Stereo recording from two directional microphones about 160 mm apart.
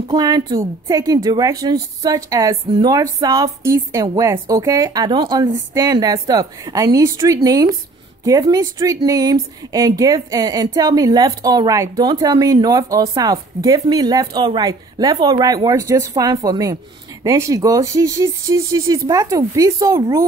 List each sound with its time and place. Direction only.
0.1 s a woman's voice: 25° right (ahead or behind)